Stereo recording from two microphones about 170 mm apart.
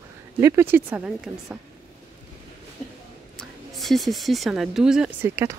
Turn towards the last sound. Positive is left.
turn(degrees=-15)  # may be behind; listen again after turning